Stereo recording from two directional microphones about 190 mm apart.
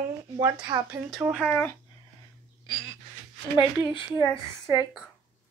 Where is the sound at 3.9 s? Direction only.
20° left (ahead or behind).